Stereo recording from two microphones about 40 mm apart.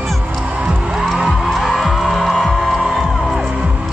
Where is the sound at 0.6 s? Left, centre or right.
Right.